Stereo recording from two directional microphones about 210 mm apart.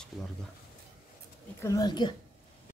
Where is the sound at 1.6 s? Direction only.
15° left (ahead or behind).